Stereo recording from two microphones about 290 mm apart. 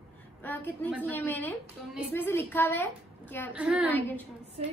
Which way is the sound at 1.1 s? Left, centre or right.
Centre.